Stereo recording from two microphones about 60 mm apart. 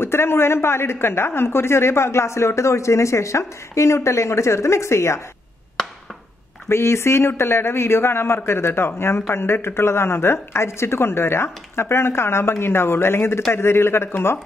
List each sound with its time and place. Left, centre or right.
0.0 s speech: left
6.7 s speech: left